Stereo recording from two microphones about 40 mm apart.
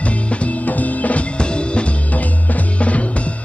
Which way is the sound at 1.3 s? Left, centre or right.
Left.